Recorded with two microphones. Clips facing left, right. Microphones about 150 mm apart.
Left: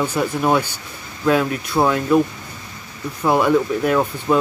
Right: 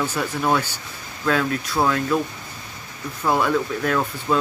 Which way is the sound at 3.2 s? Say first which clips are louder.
Left 4 dB; 10° left (ahead or behind).